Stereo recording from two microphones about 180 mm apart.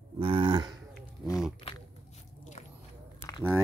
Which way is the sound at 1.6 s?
30° left (ahead or behind).